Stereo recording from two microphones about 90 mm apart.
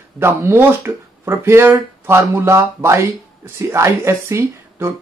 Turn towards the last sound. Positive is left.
turn(degrees=-30)  # may be behind; listen again after turning